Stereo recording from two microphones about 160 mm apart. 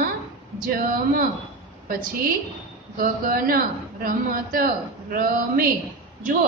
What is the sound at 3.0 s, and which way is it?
A woman's voice, 65° right (ahead or behind).